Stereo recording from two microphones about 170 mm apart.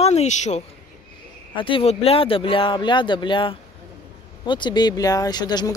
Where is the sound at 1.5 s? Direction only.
30° left (ahead or behind).